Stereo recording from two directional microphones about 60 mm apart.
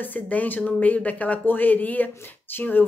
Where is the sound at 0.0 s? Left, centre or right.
Left.